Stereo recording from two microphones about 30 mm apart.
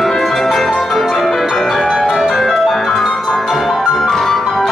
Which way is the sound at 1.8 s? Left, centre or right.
Centre.